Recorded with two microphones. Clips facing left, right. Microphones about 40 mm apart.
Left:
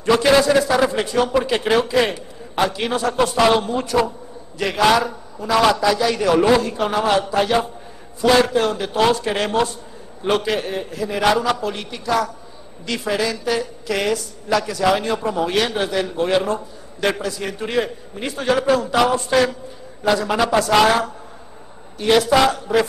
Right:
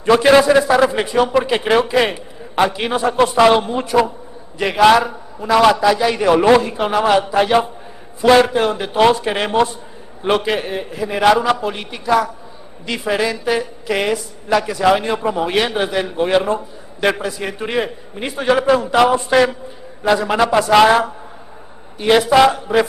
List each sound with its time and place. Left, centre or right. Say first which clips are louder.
0.0 s a woman's voice: right 4 dB; right